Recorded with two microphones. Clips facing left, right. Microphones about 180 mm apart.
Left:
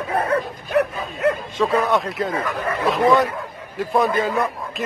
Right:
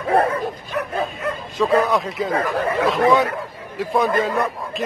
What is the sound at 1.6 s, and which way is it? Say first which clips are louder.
Speech: right 2 dB; centre (ahead or behind).